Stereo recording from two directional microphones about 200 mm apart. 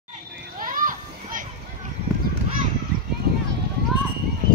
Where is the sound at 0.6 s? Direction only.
40° right (ahead or behind).